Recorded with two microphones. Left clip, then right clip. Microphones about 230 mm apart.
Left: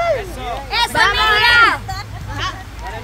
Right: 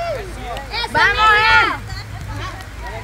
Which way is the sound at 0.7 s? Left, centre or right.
Left.